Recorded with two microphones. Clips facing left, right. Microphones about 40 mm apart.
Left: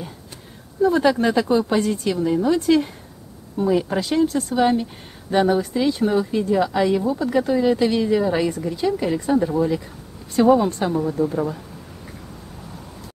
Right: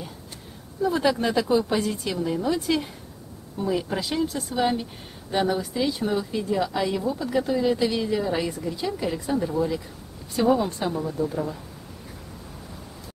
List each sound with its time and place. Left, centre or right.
0.8 s speech: centre
4.3 s speech: centre